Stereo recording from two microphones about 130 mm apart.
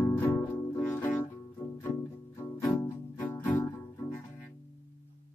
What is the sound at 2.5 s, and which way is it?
Music, 15° left (ahead or behind).